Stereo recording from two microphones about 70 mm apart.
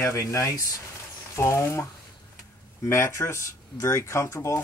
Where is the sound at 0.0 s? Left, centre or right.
Left.